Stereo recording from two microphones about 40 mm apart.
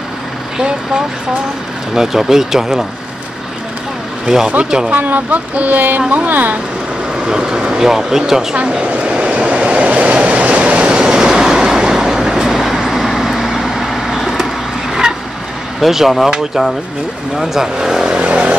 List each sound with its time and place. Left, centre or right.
2.0 s speech: centre
4.6 s speech: centre
4.9 s speech: right
7.2 s speech: centre
8.5 s vehicle: right
11.0 s train: centre
14.4 s vehicle: centre
15.8 s speech: centre
17.4 s speech: centre
18.0 s vehicle: right